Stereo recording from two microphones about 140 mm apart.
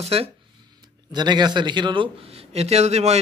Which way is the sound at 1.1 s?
30° right (ahead or behind).